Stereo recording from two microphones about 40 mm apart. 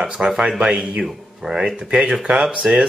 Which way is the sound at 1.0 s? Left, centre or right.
Centre.